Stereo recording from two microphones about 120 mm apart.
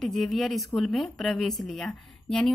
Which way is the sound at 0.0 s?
Centre (ahead or behind).